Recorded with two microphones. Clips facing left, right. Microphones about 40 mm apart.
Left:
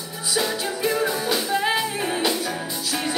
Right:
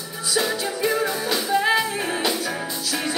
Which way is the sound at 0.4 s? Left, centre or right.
Centre.